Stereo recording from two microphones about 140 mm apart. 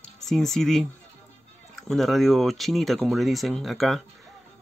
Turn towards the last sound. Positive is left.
turn(degrees=0)  # may be behind; listen again after turning